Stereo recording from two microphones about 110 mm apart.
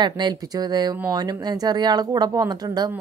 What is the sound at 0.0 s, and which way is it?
Speech, 40° right (ahead or behind).